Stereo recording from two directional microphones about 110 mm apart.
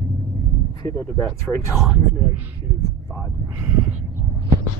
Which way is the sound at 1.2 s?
30° left (ahead or behind).